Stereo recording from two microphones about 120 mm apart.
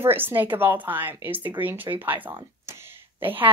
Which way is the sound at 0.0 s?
20° right (ahead or behind).